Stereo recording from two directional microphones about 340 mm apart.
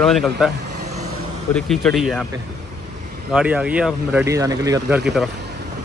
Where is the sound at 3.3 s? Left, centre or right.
Centre.